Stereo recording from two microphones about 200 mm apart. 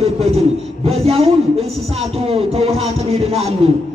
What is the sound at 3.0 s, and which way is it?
Speech, 30° right (ahead or behind).